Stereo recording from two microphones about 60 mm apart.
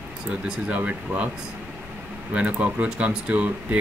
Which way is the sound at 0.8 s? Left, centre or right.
Right.